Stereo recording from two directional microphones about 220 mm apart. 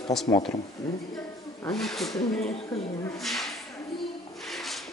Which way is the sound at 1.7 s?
Centre (ahead or behind).